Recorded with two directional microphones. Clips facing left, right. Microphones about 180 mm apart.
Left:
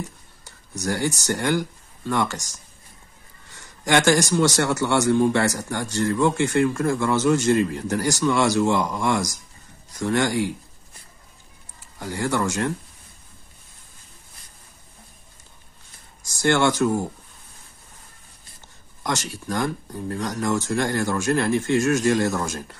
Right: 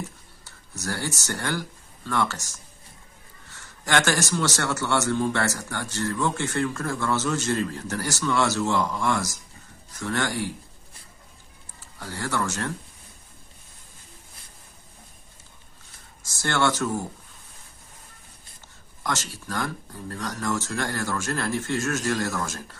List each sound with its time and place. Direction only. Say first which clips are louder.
0.7 s a man's voice: left 6 dB; 15° left (ahead or behind)
12.0 s a man's voice: left 5 dB; 15° left (ahead or behind)
16.2 s speech: left 5 dB; 15° left (ahead or behind)
19.0 s a man's voice: left 4 dB; 15° left (ahead or behind)